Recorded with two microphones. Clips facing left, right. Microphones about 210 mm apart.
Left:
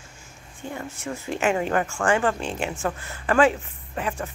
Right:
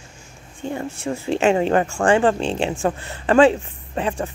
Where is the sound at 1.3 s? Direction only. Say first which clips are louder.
Right 6 dB; 25° right (ahead or behind).